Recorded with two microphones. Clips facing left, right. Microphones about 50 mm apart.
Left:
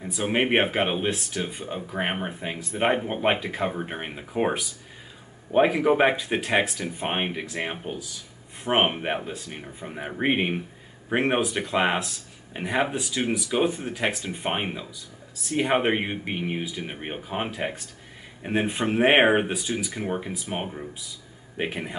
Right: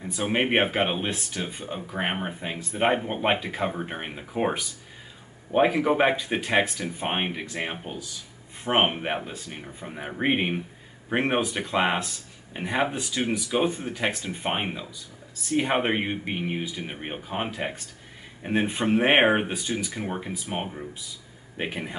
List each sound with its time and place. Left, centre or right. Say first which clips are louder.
0.0 s speech: left 1 dB; centre